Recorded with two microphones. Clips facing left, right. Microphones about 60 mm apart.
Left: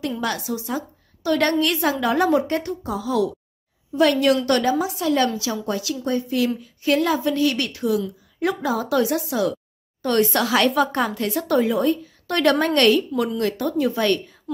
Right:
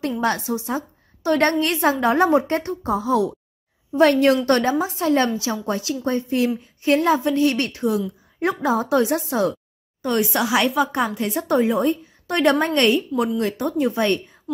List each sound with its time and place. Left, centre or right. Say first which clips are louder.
0.2 s a woman's voice: right 3 dB; right
10.0 s speech: left 1 dB; centre
11.2 s a woman's voice: right 1 dB; right